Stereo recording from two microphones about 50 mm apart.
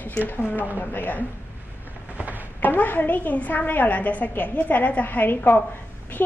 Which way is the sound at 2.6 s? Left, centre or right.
Left.